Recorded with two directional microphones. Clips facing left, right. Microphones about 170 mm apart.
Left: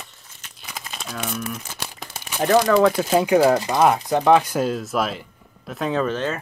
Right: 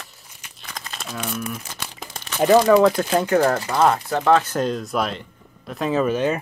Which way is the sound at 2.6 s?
Centre (ahead or behind).